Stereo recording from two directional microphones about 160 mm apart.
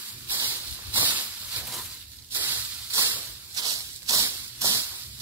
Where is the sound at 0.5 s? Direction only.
10° right (ahead or behind).